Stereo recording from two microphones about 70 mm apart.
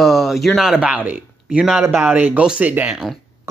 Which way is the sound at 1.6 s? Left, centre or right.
Centre.